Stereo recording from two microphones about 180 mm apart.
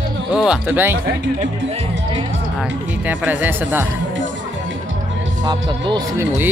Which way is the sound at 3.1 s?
10° right (ahead or behind).